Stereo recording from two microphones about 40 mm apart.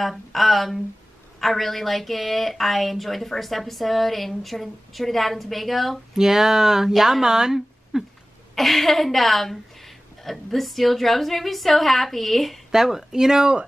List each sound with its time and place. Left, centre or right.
0.0 s speech: centre
6.1 s speech: centre
8.5 s speech: centre
12.7 s speech: centre